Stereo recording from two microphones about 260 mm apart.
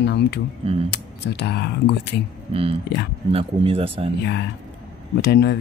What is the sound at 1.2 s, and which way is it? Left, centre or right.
Speech, left.